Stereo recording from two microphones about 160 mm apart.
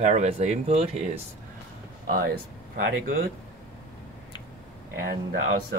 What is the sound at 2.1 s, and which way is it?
Speech, 80° right.